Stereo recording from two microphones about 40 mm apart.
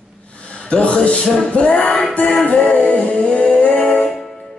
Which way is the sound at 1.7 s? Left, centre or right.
Left.